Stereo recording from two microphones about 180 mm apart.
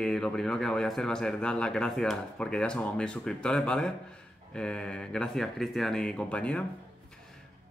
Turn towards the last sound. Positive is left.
turn(degrees=5)  # may be behind; listen again after turning